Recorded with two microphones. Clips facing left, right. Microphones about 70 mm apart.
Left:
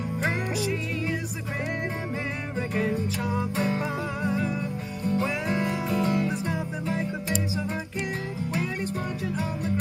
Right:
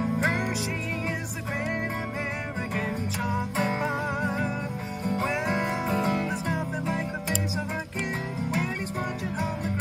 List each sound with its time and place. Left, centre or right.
2.8 s music: right